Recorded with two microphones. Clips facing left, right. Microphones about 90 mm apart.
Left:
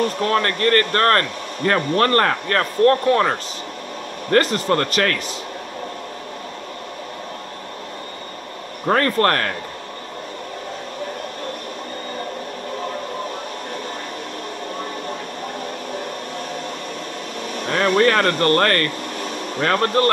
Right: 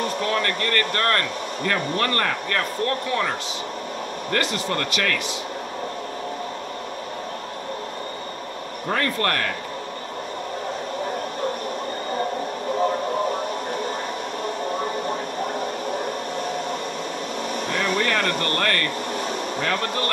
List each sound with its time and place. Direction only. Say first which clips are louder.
0.3 s speech: left 8 dB; 45° left (ahead or behind)
8.8 s speech: left 7 dB; 45° left (ahead or behind)
17.6 s speech: left 8 dB; 55° left (ahead or behind)